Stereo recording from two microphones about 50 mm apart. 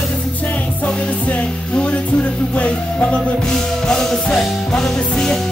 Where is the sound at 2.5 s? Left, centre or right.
Left.